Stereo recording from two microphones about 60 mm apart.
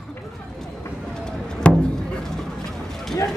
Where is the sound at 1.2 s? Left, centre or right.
Centre.